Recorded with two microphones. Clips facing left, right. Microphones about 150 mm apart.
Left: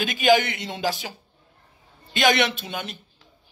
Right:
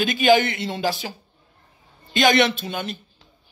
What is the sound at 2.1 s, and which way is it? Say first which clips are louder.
Speech: right 3 dB; 10° left (ahead or behind).